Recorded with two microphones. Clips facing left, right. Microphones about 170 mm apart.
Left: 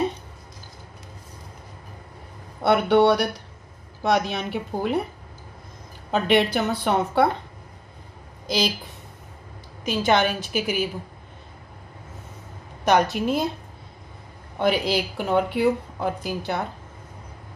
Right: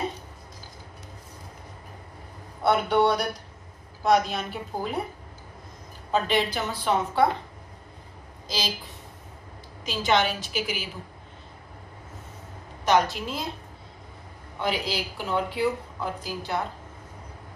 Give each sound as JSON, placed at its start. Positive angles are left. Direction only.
{"t": 2.6, "sound": "a woman's voice", "side_deg": 75}
{"t": 6.2, "sound": "speech", "side_deg": 65}
{"t": 8.5, "sound": "speech", "side_deg": 60}
{"t": 9.8, "sound": "a woman's voice", "side_deg": 55}
{"t": 12.8, "sound": "speech", "side_deg": 60}
{"t": 14.6, "sound": "speech", "side_deg": 60}